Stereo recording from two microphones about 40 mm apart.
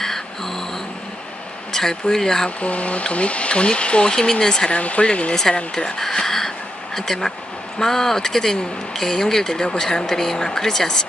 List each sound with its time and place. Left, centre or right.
0.0 s a sound: centre
1.7 s speech: centre
2.6 s speech: left
4.1 s speech: centre
4.6 s speech: left
5.9 s a sound: centre
7.0 s speech: centre